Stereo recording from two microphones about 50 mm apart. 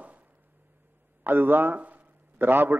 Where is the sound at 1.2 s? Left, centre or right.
Right.